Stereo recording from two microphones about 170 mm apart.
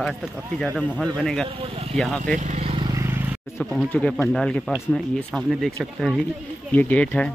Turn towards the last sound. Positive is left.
turn(degrees=10)  # may be behind; listen again after turning